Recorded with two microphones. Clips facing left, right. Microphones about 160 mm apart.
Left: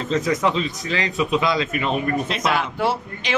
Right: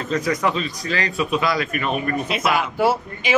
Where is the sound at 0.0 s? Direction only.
20° left (ahead or behind).